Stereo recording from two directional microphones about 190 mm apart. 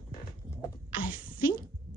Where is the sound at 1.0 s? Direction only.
45° left (ahead or behind).